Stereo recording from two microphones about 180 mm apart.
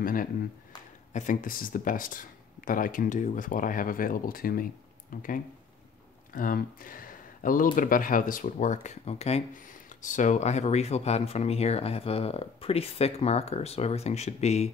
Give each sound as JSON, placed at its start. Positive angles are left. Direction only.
{"t": 0.0, "sound": "speech", "side_deg": 50}
{"t": 6.3, "sound": "speech", "side_deg": 50}